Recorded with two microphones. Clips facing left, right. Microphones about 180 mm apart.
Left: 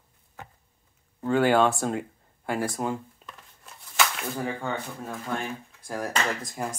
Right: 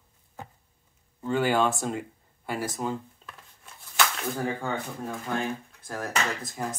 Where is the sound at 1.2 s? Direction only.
50° left (ahead or behind).